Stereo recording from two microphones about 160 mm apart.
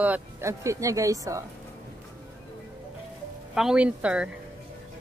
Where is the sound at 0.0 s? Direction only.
15° right (ahead or behind).